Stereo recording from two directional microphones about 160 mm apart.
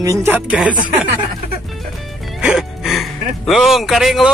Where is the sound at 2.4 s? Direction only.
5° right (ahead or behind).